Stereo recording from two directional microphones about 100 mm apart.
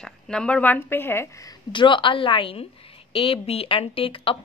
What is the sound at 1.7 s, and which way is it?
A woman's voice, 55° left (ahead or behind).